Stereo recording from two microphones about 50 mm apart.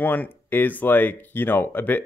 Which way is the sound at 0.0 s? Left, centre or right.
Left.